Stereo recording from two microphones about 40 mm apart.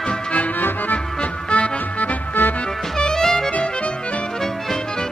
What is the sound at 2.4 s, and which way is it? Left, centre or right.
Music, left.